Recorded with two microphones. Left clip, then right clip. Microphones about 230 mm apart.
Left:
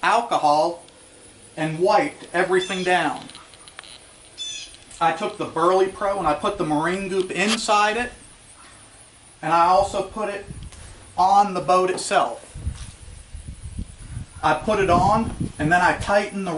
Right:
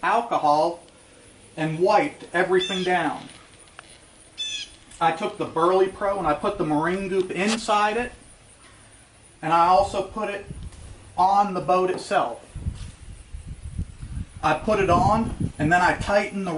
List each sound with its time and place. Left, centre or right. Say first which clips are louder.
0.0 s speech: left 2 dB; centre
1.5 s speech: left 1 dB; centre
4.4 s speech: right 2 dB; centre
9.4 s speech: left 1 dB; centre
14.4 s speech: left 2 dB; centre